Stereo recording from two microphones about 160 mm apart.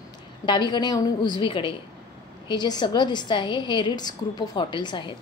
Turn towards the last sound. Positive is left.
turn(degrees=30)  # may be behind; listen again after turning